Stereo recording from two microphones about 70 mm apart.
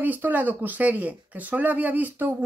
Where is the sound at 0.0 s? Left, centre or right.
Right.